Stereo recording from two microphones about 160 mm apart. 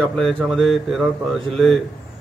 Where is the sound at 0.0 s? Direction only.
5° left (ahead or behind).